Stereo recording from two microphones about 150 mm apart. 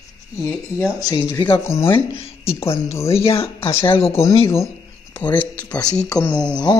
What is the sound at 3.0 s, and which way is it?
Speech, 40° left (ahead or behind).